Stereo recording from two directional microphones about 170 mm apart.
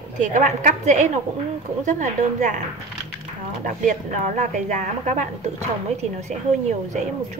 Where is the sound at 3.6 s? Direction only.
50° right (ahead or behind).